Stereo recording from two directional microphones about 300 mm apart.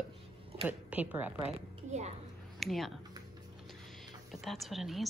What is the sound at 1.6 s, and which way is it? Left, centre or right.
Speech, right.